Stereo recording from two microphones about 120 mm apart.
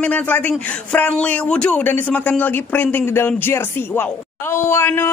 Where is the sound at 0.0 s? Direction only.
15° left (ahead or behind).